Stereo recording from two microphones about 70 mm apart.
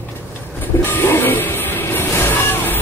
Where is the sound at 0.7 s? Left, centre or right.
Left.